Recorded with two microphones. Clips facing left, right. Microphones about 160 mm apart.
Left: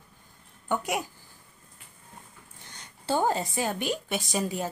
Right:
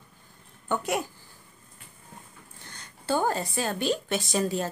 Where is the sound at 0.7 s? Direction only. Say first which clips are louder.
Right 1 dB; 10° left (ahead or behind).